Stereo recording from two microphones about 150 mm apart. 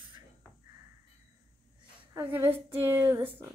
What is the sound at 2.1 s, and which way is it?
A woman's voice, 15° right (ahead or behind).